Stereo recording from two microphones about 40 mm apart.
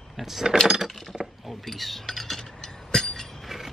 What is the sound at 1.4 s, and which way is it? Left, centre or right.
Mechanisms, centre.